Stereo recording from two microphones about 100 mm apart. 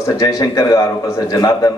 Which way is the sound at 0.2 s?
40° left (ahead or behind).